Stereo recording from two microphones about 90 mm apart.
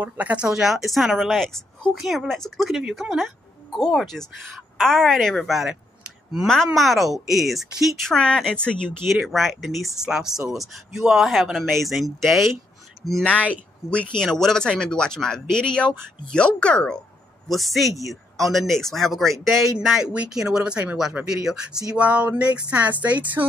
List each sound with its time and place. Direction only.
0.0 s speech: 15° right (ahead or behind); by 12.4 s centre (ahead or behind)
13.2 s speech: 15° left (ahead or behind); by 23.4 s 15° right (ahead or behind)